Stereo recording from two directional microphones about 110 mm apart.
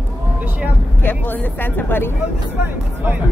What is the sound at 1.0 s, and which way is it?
Speech, 15° left (ahead or behind).